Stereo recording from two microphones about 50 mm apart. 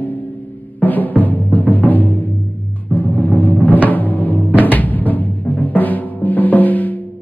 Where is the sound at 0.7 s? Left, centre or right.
Left.